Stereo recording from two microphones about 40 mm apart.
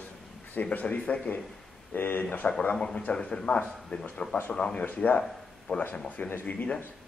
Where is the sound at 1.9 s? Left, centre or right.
Left.